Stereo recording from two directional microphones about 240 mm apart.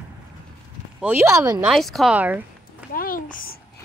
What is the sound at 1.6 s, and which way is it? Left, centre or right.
Speech, centre.